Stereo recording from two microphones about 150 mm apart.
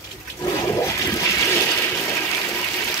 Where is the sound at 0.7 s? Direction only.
20° left (ahead or behind).